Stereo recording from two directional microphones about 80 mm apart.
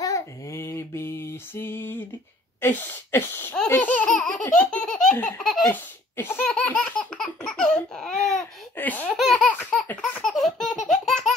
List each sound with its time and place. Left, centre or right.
0.0 s mantra: left
2.6 s speech: left
4.1 s laughter: centre
5.7 s laughter: left
6.4 s laughter: centre
8.7 s baby laughter: left
9.1 s baby laughter: centre